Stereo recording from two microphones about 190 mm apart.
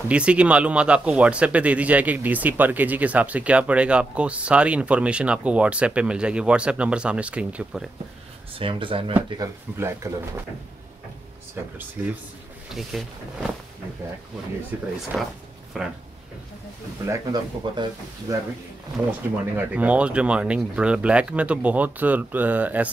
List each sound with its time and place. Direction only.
0.1 s a man's voice: 5° right (ahead or behind)
8.5 s speech: 25° right (ahead or behind)
9.3 s a man's voice: 15° right (ahead or behind)
11.8 s a man's voice: 10° right (ahead or behind)
14.7 s a man's voice: 10° right (ahead or behind)
17.0 s speech: 20° right (ahead or behind)
19.5 s a man's voice: 5° right (ahead or behind)